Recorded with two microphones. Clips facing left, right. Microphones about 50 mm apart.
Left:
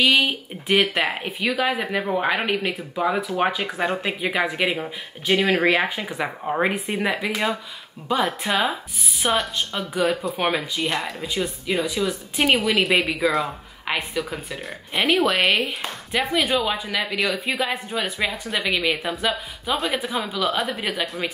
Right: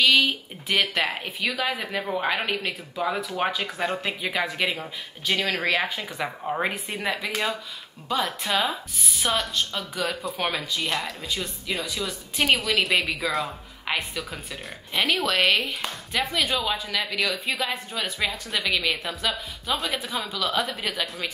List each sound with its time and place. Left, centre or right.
0.0 s speech: left
12.8 s speech: centre
13.8 s a woman's voice: centre
15.4 s speech: centre
19.7 s speech: centre
20.0 s speech: left
20.5 s speech: centre